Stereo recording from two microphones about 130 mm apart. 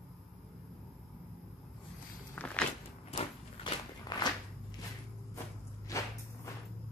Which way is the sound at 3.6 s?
30° left (ahead or behind).